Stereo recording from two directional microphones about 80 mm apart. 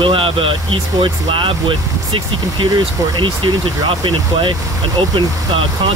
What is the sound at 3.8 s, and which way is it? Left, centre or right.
Speech, right.